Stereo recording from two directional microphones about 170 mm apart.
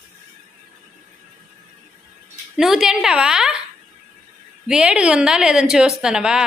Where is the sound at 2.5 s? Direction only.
Centre (ahead or behind).